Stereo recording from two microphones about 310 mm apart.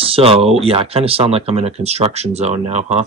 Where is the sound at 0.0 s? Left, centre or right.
Centre.